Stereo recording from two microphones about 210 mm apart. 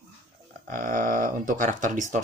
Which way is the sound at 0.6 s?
40° right (ahead or behind).